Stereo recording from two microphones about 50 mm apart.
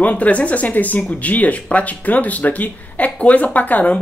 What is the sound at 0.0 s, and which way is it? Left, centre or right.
Speech, left.